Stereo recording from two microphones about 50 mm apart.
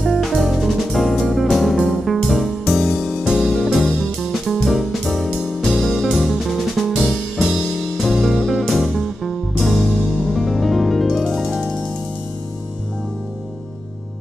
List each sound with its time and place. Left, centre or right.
0.0 s music: centre
3.5 s music: centre